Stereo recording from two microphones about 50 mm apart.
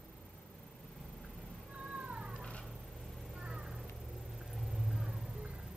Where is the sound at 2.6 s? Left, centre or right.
Centre.